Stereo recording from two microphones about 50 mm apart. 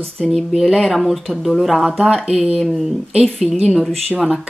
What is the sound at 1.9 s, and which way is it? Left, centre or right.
Speech, centre.